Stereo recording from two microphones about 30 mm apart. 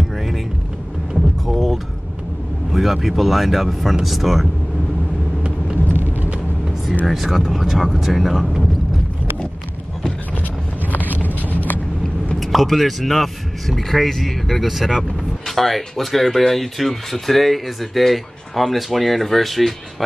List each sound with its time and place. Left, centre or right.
1.1 s vehicle: centre
2.7 s speech: centre
7.1 s speech: centre
10.9 s vehicle: left
12.4 s speech: centre